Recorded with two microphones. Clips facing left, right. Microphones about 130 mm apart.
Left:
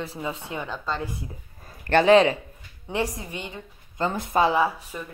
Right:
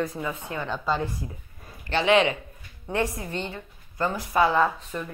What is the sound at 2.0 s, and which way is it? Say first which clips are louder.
Speech: left 3 dB; 35° left (ahead or behind).